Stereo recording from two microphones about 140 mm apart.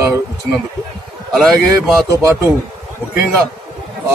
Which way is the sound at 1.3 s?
Centre (ahead or behind).